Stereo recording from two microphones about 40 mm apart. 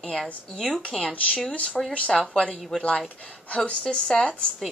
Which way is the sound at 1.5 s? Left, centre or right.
Left.